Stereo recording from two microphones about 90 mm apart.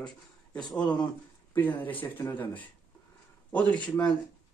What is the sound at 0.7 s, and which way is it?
Speech, 10° left (ahead or behind).